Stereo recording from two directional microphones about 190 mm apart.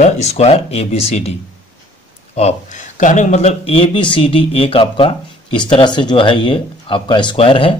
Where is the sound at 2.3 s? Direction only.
35° left (ahead or behind).